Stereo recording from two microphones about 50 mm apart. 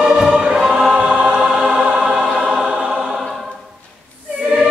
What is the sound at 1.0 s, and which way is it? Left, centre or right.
Choir, centre.